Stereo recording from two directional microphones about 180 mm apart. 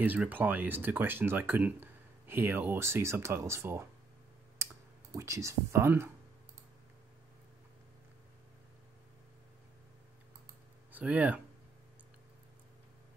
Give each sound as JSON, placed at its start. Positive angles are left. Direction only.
{"t": 0.0, "sound": "speech", "side_deg": -10}
{"t": 5.1, "sound": "speech", "side_deg": -15}
{"t": 10.9, "sound": "speech", "side_deg": -10}